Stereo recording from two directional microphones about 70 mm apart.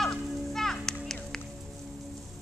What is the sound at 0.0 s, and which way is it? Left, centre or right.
Music, centre.